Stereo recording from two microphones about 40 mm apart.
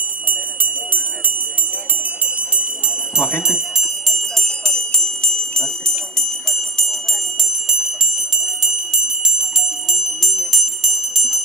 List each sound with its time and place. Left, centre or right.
3.2 s speech: left
4.4 s bell: centre
8.7 s bell: centre